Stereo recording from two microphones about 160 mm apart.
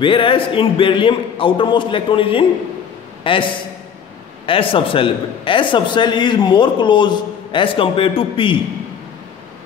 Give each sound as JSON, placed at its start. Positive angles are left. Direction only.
{"t": 0.0, "sound": "a man's voice", "side_deg": 35}
{"t": 4.5, "sound": "a man's voice", "side_deg": 35}